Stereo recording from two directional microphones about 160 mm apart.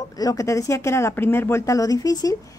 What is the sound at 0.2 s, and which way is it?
A woman's voice, 20° left (ahead or behind).